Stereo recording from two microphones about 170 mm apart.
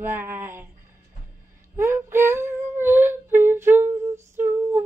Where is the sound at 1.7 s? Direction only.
15° right (ahead or behind).